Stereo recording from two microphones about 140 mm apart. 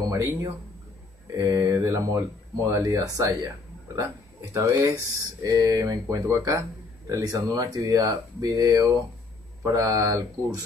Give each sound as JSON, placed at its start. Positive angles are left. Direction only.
{"t": 0.0, "sound": "a sound", "side_deg": -25}
{"t": 1.3, "sound": "speech", "side_deg": -20}
{"t": 4.6, "sound": "speech", "side_deg": -20}